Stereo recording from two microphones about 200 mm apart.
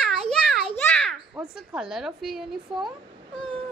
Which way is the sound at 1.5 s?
5° right (ahead or behind).